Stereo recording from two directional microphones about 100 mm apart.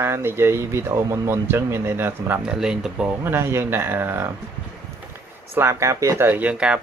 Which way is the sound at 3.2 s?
25° right (ahead or behind).